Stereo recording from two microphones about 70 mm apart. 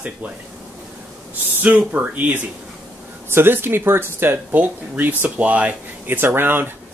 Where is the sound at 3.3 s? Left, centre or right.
Right.